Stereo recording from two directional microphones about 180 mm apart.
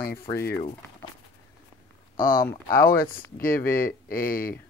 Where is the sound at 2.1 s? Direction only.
55° left (ahead or behind).